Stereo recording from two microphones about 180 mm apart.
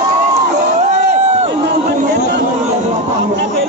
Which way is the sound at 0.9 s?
40° right (ahead or behind).